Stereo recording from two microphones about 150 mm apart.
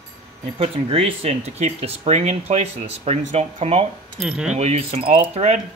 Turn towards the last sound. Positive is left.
turn(degrees=-50)  # may be behind; listen again after turning